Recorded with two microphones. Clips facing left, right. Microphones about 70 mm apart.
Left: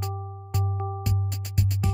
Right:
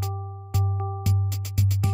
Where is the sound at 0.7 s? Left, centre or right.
Centre.